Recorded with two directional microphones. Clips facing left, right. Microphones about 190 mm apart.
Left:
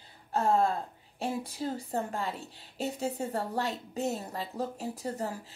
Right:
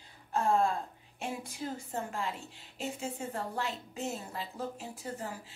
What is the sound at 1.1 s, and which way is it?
A woman's voice, 35° left (ahead or behind).